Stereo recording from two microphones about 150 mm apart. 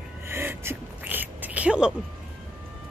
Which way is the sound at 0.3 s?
15° right (ahead or behind).